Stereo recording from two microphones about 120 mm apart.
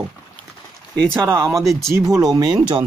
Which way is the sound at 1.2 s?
20° right (ahead or behind).